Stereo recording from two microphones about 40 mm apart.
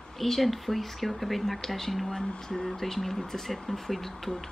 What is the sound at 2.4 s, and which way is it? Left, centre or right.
Speech, centre.